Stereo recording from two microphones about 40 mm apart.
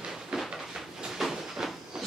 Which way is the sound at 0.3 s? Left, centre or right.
Centre.